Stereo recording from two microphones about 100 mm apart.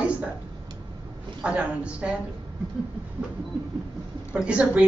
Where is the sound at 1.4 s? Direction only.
10° right (ahead or behind).